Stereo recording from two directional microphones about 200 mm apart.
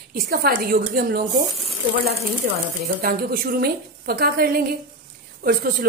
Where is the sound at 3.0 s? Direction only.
45° right (ahead or behind).